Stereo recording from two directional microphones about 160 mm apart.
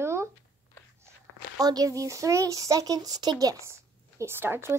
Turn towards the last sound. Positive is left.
turn(degrees=-15)  # may be behind; listen again after turning